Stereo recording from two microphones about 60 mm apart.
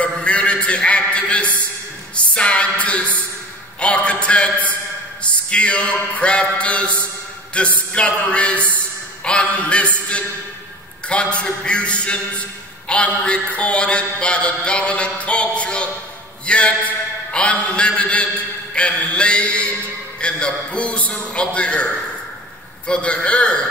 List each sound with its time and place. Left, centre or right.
0.0 s music: left
3.8 s a sound: left
5.5 s a man's voice: centre
11.1 s a man's voice: centre